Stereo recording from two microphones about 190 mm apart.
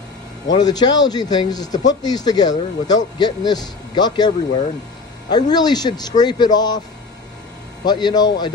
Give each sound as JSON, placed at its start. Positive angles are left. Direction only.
{"t": 0.5, "sound": "a man's voice", "side_deg": 20}
{"t": 5.3, "sound": "a man's voice", "side_deg": 20}
{"t": 7.8, "sound": "a man's voice", "side_deg": 20}